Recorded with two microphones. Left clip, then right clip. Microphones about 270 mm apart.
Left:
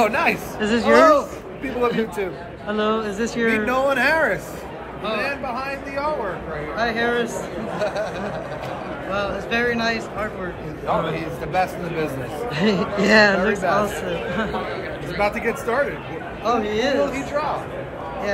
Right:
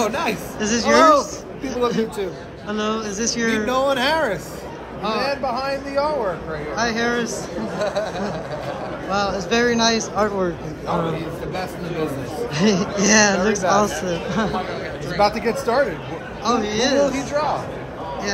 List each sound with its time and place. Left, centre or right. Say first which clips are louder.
0.0 s speech: left 3 dB; centre
5.2 s speech: right 3 dB; right
6.8 s speech: even; centre
7.8 s speech: right 1 dB; right
9.1 s speech: right 3 dB; centre
15.4 s speech: right 2 dB; right
16.4 s speech: right 1 dB; centre
17.0 s speech: right 2 dB; right